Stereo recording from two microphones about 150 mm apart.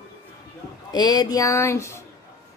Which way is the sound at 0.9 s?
30° left (ahead or behind).